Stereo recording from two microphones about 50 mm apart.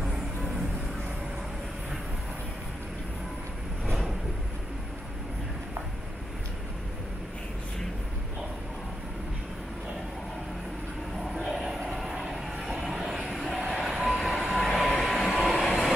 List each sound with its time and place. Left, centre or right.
0.0 s vehicle: centre
11.3 s a sound: centre
11.9 s vehicle: centre